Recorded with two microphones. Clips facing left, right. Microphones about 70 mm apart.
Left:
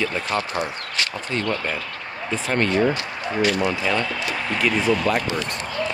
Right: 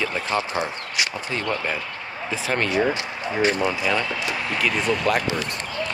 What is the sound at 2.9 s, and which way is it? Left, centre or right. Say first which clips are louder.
Speech: left 1 dB; right.